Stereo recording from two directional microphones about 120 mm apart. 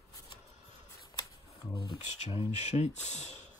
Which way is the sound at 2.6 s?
70° left (ahead or behind).